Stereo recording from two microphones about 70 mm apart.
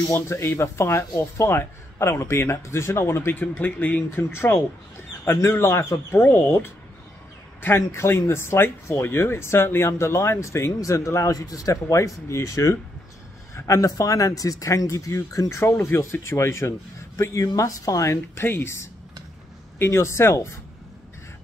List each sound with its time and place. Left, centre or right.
0.1 s speech: left
3.3 s speech: left
4.2 s speech: left
15.8 s speech: left